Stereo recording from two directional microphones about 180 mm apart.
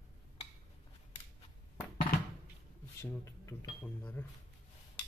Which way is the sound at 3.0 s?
15° left (ahead or behind).